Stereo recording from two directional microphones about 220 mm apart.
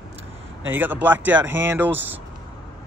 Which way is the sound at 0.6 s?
10° right (ahead or behind).